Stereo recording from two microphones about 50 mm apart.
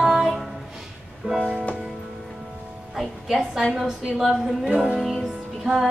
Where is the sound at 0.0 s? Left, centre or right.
Centre.